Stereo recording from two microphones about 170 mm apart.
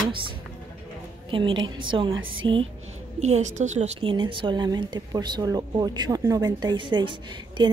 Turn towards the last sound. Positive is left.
turn(degrees=-30)  # may be behind; listen again after turning